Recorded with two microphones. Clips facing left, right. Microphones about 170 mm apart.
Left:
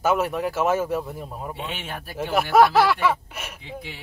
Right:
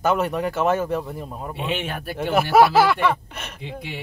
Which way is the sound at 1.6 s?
65° right (ahead or behind).